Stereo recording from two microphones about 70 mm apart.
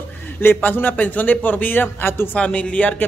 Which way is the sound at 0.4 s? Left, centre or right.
Left.